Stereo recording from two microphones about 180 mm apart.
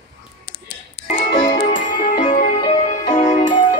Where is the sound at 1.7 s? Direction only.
45° left (ahead or behind).